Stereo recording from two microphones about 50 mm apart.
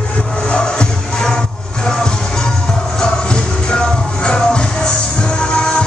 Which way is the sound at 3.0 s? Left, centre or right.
Centre.